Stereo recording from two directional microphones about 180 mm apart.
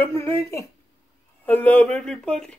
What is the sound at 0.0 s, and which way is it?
Speech, 15° left (ahead or behind).